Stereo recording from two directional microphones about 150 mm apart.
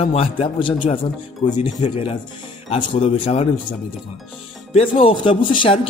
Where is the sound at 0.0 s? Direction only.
40° left (ahead or behind).